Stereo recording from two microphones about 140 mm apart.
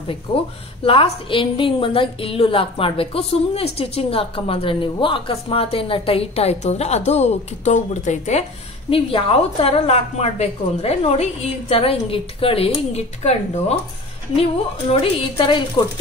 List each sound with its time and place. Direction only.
0.3 s a woman's voice: 45° left (ahead or behind)
8.9 s a woman's voice: 40° left (ahead or behind)
14.9 s a woman's voice: 40° left (ahead or behind)